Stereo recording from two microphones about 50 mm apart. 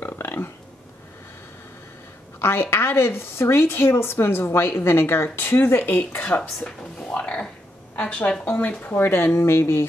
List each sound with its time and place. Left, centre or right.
0.0 s a sound: left
2.4 s a woman's voice: left
5.6 s a woman's voice: left
6.6 s a woman's voice: left